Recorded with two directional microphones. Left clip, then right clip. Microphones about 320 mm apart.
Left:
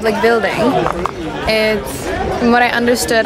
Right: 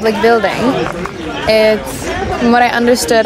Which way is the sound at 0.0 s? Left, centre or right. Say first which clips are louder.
Right 2 dB; centre.